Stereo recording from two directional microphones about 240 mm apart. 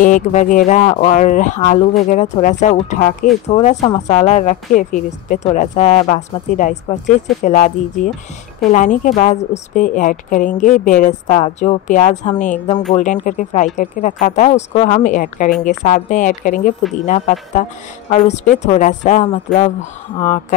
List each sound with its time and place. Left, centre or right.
0.0 s speech: left